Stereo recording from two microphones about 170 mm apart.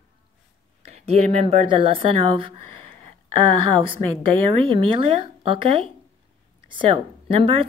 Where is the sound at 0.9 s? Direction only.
35° right (ahead or behind).